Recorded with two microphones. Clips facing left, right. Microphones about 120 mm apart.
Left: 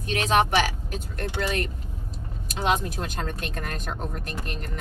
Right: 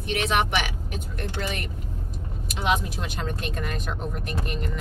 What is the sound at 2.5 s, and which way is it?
Speech, 45° left (ahead or behind).